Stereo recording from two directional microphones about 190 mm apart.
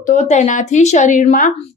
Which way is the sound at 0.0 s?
40° left (ahead or behind).